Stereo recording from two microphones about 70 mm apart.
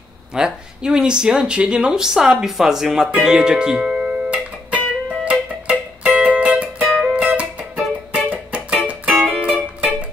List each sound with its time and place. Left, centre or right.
0.3 s speech: centre
3.1 s music: centre